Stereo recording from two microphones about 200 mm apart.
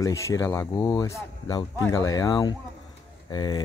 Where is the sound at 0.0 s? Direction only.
15° left (ahead or behind).